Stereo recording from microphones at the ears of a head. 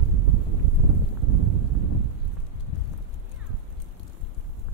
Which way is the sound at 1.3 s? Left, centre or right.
Right.